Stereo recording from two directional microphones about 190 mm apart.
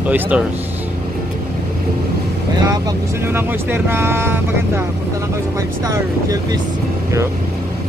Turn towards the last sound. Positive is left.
turn(degrees=-20)  # may be behind; listen again after turning